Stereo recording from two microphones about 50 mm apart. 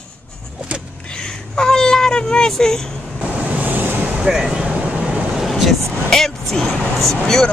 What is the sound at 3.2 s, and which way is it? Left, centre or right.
Vehicle, right.